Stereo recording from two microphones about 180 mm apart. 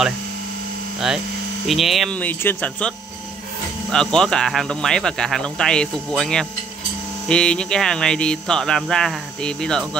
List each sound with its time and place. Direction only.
0.9 s hum: centre (ahead or behind)
1.7 s speech: centre (ahead or behind)
3.9 s speech: 5° left (ahead or behind)